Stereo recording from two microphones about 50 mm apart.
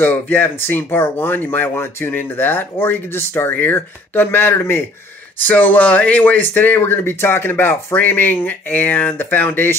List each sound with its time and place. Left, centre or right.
0.0 s speech: left
1.8 s speech: left
2.1 s speech: left
5.4 s speech: left